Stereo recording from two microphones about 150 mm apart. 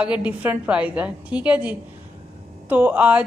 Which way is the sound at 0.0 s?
10° right (ahead or behind).